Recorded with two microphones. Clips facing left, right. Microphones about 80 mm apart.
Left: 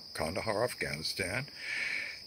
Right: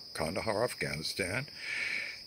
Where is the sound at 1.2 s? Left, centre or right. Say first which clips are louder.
Right 1 dB; centre.